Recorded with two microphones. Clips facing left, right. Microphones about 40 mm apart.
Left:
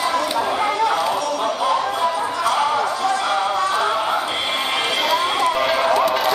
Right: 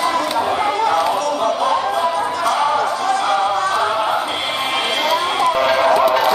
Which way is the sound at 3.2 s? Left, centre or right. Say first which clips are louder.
Right 3 dB; centre.